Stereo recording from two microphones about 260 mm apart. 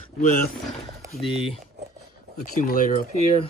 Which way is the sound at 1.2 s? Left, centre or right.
Left.